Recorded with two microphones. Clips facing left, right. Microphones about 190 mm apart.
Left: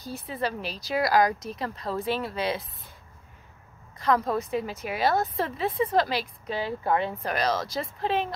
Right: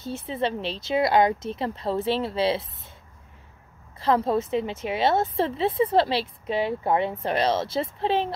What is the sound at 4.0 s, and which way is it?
Speech, 30° right (ahead or behind).